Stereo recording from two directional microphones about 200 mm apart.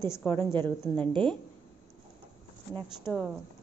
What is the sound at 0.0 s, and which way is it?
A woman's voice, 10° left (ahead or behind).